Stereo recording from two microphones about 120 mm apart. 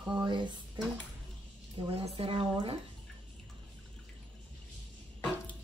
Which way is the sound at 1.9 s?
55° right (ahead or behind).